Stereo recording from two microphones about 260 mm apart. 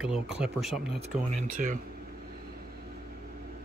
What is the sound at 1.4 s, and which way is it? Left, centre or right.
Speech, right.